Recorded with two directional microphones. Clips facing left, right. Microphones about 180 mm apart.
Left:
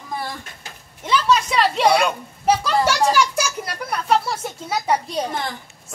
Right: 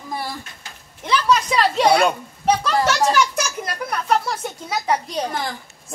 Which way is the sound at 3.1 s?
10° left (ahead or behind).